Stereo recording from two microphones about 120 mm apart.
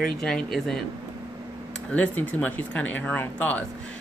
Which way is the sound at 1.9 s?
10° left (ahead or behind).